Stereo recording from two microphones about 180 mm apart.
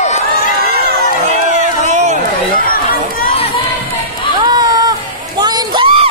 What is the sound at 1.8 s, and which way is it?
Run, 40° right (ahead or behind).